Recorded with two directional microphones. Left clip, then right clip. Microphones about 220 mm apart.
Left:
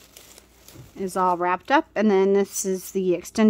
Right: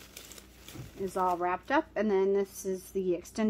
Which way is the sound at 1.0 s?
50° left (ahead or behind).